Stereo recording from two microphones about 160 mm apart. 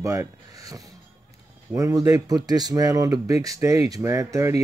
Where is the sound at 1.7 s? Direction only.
20° right (ahead or behind).